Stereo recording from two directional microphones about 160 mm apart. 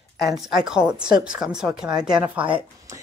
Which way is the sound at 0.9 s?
30° right (ahead or behind).